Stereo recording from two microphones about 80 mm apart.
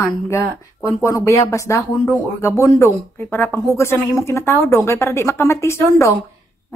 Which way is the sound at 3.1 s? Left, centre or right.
Left.